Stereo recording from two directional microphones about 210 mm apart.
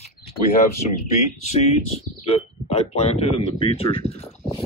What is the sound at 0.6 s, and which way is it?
Speech, 30° left (ahead or behind).